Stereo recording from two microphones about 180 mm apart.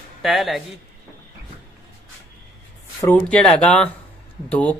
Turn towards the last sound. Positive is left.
turn(degrees=5)  # may be behind; listen again after turning